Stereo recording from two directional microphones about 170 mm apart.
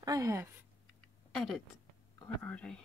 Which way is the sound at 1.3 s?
Centre (ahead or behind).